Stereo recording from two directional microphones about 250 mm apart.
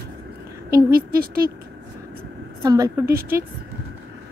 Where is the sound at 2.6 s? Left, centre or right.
Centre.